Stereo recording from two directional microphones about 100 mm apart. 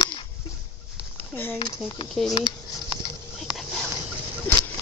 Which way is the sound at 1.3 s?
20° left (ahead or behind).